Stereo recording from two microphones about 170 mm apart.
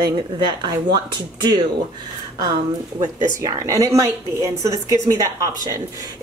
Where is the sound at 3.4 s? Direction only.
20° right (ahead or behind).